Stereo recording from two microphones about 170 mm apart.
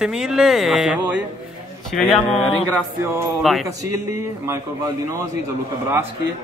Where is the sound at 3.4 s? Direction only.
Centre (ahead or behind).